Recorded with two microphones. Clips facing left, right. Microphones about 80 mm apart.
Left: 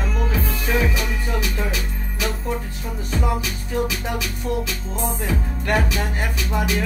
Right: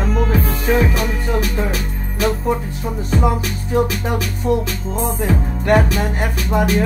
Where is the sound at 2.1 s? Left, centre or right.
Right.